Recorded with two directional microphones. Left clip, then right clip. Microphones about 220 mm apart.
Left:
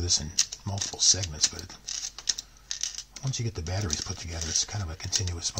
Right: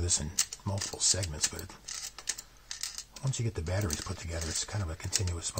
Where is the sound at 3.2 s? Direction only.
20° right (ahead or behind).